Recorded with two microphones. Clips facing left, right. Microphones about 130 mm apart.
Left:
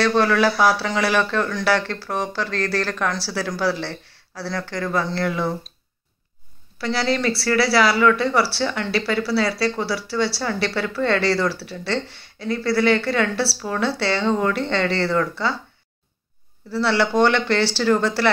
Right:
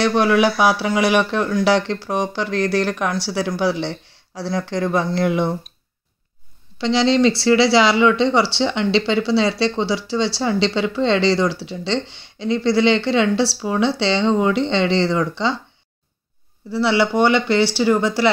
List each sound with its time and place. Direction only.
0.0 s speech: 15° right (ahead or behind)
6.8 s speech: 20° right (ahead or behind)
16.7 s speech: 15° right (ahead or behind)